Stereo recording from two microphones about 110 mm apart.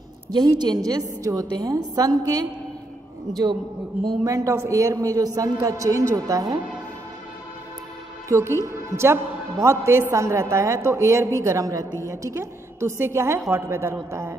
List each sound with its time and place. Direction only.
0.3 s a man's voice: 40° right (ahead or behind)
4.2 s a man's voice: 30° right (ahead or behind)
8.3 s a man's voice: 25° right (ahead or behind)